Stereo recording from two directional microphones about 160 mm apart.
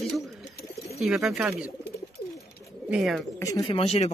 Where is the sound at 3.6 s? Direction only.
35° left (ahead or behind).